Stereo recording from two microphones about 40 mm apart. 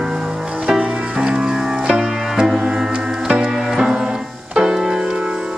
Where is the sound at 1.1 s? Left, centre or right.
Centre.